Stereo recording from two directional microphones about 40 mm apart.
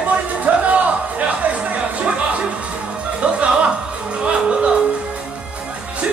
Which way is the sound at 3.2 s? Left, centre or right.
Right.